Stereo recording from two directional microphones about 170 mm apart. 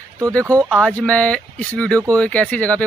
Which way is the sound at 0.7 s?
5° left (ahead or behind).